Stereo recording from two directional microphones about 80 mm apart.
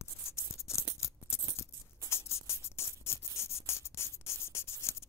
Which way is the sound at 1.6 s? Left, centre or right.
Left.